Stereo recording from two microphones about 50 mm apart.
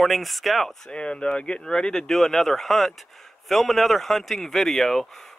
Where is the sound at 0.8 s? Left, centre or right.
Centre.